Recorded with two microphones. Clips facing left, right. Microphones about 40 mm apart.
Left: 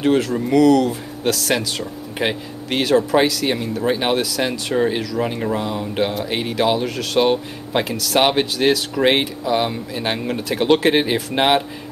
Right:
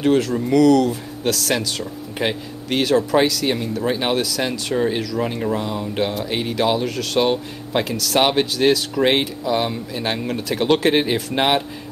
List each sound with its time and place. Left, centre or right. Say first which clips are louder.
0.0 s speech: even; centre